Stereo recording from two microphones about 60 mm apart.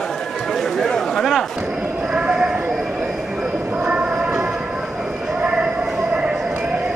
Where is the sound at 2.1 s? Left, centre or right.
Centre.